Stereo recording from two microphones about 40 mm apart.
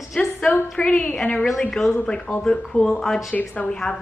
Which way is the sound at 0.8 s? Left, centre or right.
Left.